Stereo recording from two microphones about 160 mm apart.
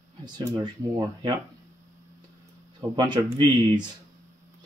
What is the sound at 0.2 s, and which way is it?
Speech, 25° right (ahead or behind).